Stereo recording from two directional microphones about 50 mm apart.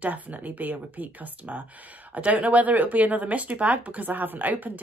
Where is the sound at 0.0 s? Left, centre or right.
Right.